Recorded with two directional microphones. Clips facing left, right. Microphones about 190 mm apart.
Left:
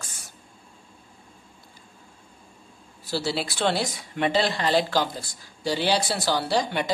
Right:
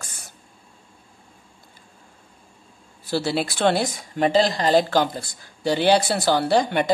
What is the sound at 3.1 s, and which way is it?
Speech, 55° right (ahead or behind).